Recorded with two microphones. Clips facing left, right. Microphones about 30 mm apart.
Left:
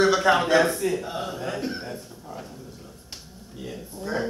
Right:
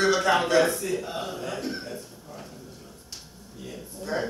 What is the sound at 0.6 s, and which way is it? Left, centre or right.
Speech, left.